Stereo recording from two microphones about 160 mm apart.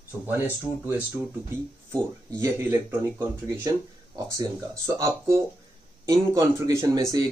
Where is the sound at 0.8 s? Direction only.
10° right (ahead or behind).